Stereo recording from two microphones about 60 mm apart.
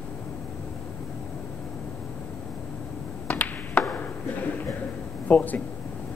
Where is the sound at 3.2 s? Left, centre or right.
Left.